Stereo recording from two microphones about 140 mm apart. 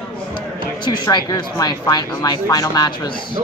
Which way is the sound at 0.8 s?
30° left (ahead or behind).